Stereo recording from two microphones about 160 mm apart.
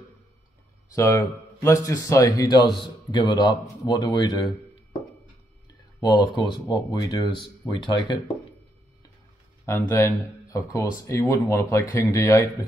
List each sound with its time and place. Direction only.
0.9 s a man's voice: 20° left (ahead or behind)
5.9 s a man's voice: 25° left (ahead or behind)
9.7 s a man's voice: 15° left (ahead or behind)